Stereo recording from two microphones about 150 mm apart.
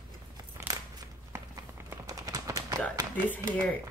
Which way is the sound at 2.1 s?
25° right (ahead or behind).